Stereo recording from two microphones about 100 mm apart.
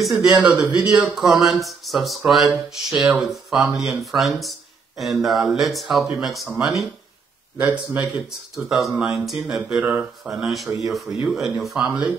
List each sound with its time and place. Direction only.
0.0 s speech: centre (ahead or behind)
0.4 s speech: 15° right (ahead or behind)
7.5 s speech: 20° right (ahead or behind)
8.5 s speech: centre (ahead or behind)